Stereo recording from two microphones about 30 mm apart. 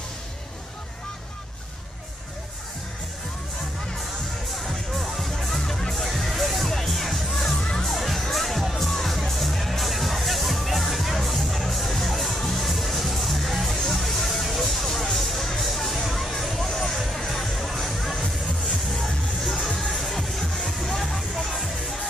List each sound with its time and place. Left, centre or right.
4.6 s music: centre
5.3 s music: centre
20.6 s music: centre
21.0 s music: centre